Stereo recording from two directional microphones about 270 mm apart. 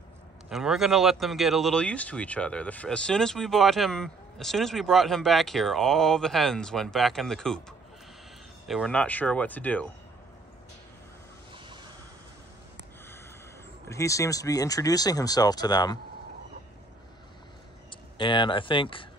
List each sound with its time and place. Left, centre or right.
0.5 s speech: centre
8.6 s speech: centre
13.8 s speech: centre
18.1 s speech: centre